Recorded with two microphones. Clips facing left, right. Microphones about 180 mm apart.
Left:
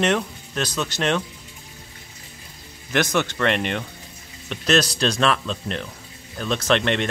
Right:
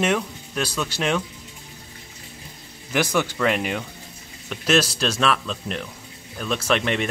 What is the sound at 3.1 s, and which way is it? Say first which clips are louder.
Speech: even; 5° right (ahead or behind).